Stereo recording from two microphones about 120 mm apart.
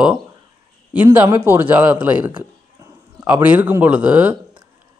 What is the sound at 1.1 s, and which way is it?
A man's voice, 15° right (ahead or behind).